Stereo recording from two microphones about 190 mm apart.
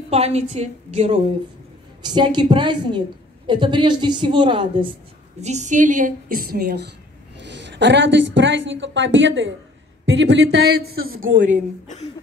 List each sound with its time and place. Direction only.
0.1 s a woman's voice: 35° right (ahead or behind)
2.0 s a woman's voice: 25° right (ahead or behind)
5.4 s a woman's voice: 40° right (ahead or behind); by 6.9 s 55° right (ahead or behind)
7.4 s a woman's voice: 65° right (ahead or behind); by 11.6 s 45° right (ahead or behind)